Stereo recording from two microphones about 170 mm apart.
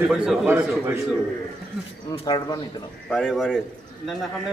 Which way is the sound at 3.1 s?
Centre (ahead or behind).